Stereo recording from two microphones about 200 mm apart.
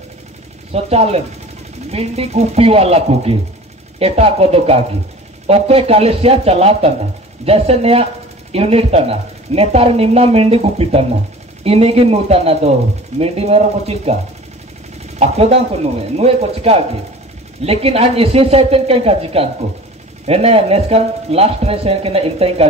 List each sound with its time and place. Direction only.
0.8 s speech: 30° right (ahead or behind)
15.1 s speech: 30° right (ahead or behind)